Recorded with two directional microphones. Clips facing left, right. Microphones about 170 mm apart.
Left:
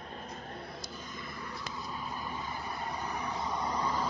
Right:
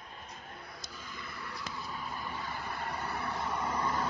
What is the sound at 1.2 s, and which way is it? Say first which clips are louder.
Vehicle: right 1 dB; 20° left (ahead or behind).